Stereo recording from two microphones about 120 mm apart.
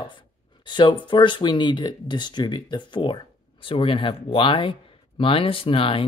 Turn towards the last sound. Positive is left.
turn(degrees=45)  # may be behind; listen again after turning